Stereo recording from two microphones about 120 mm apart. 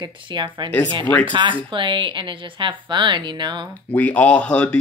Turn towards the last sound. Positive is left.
turn(degrees=10)  # may be behind; listen again after turning